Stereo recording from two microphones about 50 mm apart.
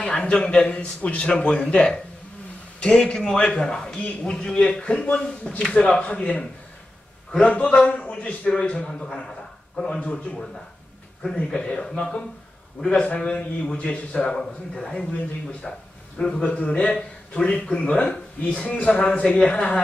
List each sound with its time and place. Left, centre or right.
0.0 s a man's voice: left
8.7 s a man's voice: centre
11.3 s a man's voice: centre
13.0 s a man's voice: left
16.4 s a man's voice: left